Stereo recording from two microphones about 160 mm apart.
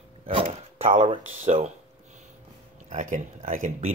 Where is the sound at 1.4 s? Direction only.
50° right (ahead or behind).